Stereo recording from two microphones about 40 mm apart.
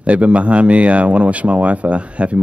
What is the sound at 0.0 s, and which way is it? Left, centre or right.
Speech, right.